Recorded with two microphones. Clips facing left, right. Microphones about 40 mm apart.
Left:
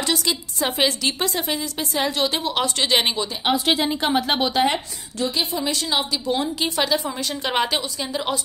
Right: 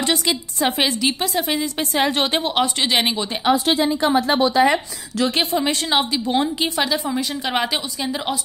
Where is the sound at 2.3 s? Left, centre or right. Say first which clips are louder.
Right 3 dB; right.